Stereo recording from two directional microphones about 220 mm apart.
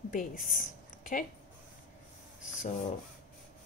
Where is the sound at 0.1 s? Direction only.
40° left (ahead or behind).